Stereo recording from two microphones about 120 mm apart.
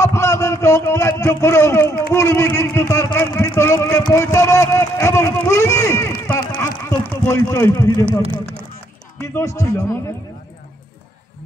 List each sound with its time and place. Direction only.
0.0 s a man's voice: 25° left (ahead or behind)
4.1 s a sound: 25° left (ahead or behind)
9.2 s a man's voice: 25° left (ahead or behind)